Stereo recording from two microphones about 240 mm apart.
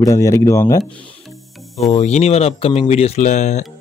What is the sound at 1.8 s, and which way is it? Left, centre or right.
Speech, left.